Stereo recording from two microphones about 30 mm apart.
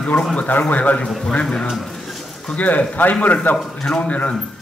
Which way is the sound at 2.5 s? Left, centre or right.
Left.